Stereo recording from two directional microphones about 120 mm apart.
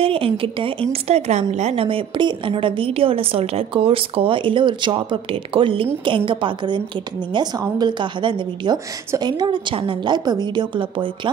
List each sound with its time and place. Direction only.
0.0 s a woman's voice: 50° right (ahead or behind)